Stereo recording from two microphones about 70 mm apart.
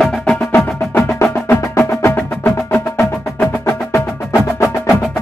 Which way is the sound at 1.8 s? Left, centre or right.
Left.